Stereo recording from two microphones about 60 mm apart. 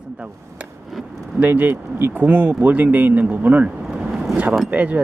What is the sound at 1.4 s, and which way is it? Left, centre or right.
Speech, right.